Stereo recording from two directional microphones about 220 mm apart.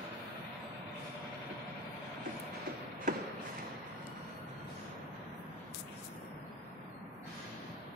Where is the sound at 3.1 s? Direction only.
35° right (ahead or behind).